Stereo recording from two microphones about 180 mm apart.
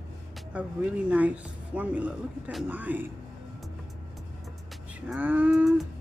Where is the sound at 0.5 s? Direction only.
10° right (ahead or behind).